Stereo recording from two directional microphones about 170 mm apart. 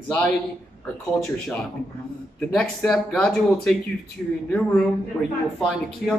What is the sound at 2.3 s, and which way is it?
A man's voice, 5° left (ahead or behind).